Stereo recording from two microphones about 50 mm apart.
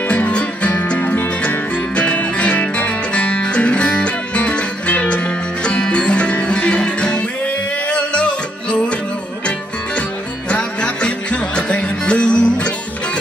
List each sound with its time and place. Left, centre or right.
0.3 s music: left
1.0 s music: left; by 8.9 s centre
10.5 s music: left